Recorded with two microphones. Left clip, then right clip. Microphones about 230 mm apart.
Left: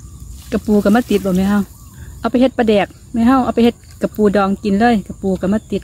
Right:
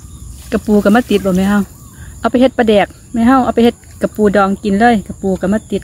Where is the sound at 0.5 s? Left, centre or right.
Centre.